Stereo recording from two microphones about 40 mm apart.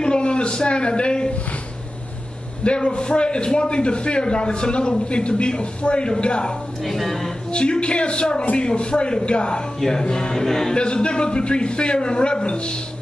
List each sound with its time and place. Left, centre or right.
0.0 s a man's voice: left
2.6 s a man's voice: left
6.8 s speech: centre
7.5 s a man's voice: left
9.8 s speech: centre
10.7 s a man's voice: left